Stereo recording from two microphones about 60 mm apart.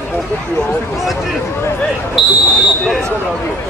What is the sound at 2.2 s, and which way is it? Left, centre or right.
Speech, centre.